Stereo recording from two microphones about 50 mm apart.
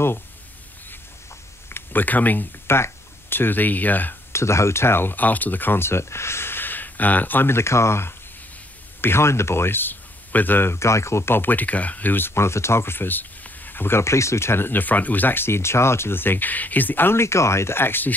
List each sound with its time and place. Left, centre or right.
1.7 s speech: left
2.6 s speech: left
4.3 s speech: left
7.5 s speech: left
10.7 s speech: left
11.3 s speech: left
14.0 s speech: left
14.7 s speech: left